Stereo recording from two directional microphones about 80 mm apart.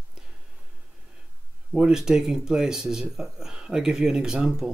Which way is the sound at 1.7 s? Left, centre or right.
Centre.